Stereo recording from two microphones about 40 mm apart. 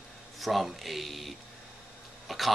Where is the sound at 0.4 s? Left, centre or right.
Centre.